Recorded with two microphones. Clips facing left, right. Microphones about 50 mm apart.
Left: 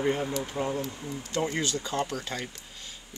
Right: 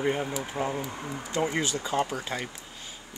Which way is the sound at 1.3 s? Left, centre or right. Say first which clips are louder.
Right 1 dB; centre.